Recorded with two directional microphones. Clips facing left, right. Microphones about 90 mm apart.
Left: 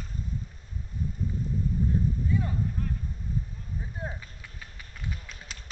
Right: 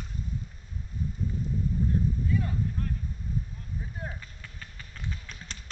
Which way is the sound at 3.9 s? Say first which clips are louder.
Left 4 dB; 20° left (ahead or behind).